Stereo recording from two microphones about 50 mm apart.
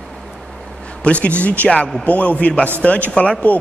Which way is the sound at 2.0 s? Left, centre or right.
Left.